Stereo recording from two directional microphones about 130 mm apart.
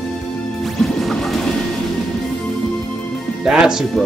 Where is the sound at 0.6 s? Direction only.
Centre (ahead or behind).